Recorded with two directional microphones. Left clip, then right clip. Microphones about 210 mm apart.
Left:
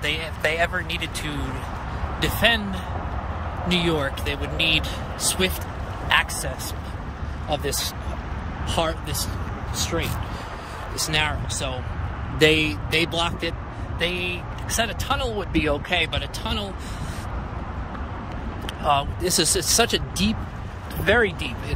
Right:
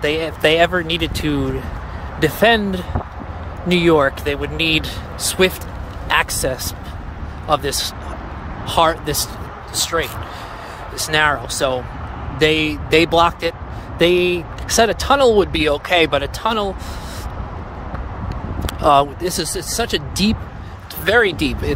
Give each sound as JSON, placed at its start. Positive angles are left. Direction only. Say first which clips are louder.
{"t": 0.0, "sound": "speech", "louder": "right 8 dB", "side_deg": -30}
{"t": 7.4, "sound": "speech", "louder": "right 8 dB", "side_deg": -10}
{"t": 12.4, "sound": "speech", "louder": "right 3 dB", "side_deg": -5}
{"t": 19.2, "sound": "speech", "louder": "even", "side_deg": 0}
{"t": 20.2, "sound": "speech", "louder": "right 6 dB", "side_deg": -15}
{"t": 21.0, "sound": "speech", "louder": "right 5 dB", "side_deg": -30}